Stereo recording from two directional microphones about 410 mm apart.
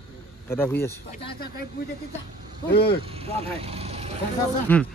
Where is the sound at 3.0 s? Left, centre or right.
Centre.